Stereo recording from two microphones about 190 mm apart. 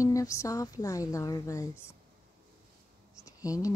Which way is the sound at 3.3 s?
15° left (ahead or behind).